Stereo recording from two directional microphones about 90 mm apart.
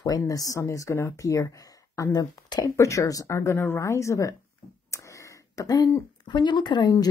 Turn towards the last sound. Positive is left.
turn(degrees=50)  # may be behind; listen again after turning